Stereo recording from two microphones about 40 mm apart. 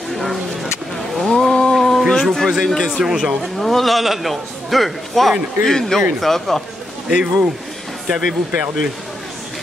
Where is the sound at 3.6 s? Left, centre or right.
Centre.